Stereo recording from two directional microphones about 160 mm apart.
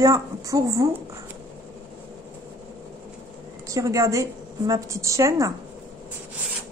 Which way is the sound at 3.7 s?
20° right (ahead or behind).